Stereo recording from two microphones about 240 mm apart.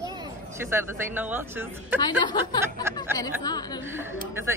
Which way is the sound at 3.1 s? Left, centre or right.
Centre.